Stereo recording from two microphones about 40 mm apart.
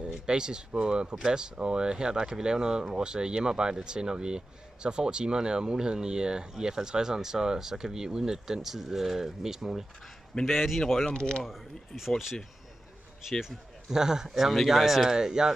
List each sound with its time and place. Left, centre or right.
0.0 s speech: centre
10.4 s a man's voice: centre
11.1 s speech: left
11.4 s speech: centre
13.3 s a man's voice: centre
15.0 s speech: centre